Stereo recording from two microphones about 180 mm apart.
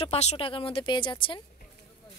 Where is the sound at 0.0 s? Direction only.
35° left (ahead or behind).